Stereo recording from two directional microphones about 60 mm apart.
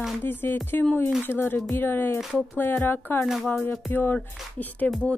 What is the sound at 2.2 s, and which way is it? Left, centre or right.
Speech, centre.